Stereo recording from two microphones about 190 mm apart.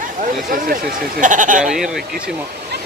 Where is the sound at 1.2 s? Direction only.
40° right (ahead or behind).